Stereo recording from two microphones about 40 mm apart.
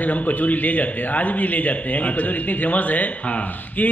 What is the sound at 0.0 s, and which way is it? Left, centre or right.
A man's voice, left.